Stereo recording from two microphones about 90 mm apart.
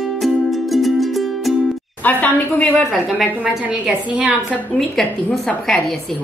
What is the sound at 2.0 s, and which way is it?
Speech, 20° left (ahead or behind).